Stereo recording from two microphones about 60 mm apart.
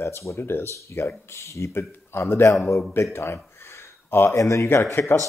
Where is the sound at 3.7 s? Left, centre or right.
Left.